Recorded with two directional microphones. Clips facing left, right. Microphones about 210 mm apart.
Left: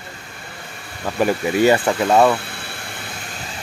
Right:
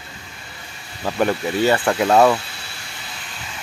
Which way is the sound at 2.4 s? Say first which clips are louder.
Left 5 dB; 55° left (ahead or behind).